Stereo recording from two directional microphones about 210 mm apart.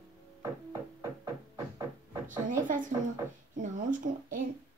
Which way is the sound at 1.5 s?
15° right (ahead or behind).